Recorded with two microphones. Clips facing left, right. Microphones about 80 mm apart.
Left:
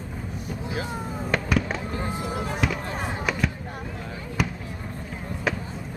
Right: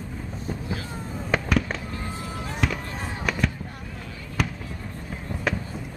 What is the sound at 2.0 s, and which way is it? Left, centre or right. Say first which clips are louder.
Fireworks: left 4 dB; centre.